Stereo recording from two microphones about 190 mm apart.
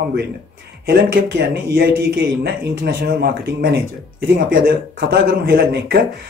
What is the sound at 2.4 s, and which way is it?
Speech, 55° right (ahead or behind).